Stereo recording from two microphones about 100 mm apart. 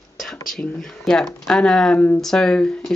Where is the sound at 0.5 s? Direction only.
5° left (ahead or behind).